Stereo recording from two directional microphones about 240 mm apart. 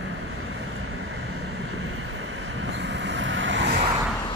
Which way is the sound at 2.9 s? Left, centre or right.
Right.